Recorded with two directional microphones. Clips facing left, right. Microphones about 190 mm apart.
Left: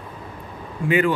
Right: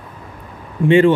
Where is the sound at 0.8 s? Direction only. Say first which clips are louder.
Right 8 dB; 25° right (ahead or behind).